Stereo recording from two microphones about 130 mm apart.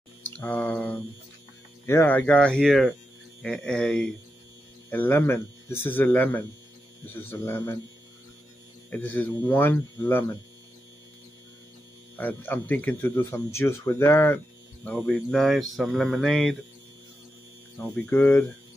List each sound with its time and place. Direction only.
0.2 s a sound: 15° left (ahead or behind)
1.9 s speech: 15° left (ahead or behind)
4.9 s speech: 15° left (ahead or behind)
8.9 s speech: 15° left (ahead or behind)
12.2 s speech: 15° left (ahead or behind)
15.0 s speech: 5° left (ahead or behind)
17.8 s speech: 10° left (ahead or behind)